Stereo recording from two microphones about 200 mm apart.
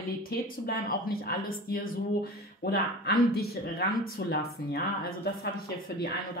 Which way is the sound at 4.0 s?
90° left.